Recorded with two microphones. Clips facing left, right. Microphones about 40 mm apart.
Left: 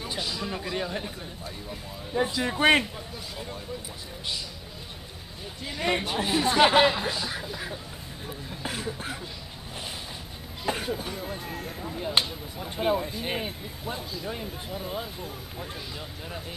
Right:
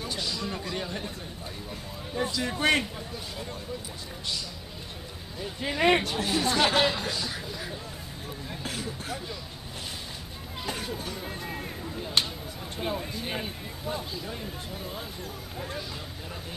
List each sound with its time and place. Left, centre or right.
0.0 s a sound: centre
1.7 s speech: centre
5.6 s speech: right
6.0 s speech: centre
10.6 s speech: centre
11.4 s speech: centre
12.0 s speech: centre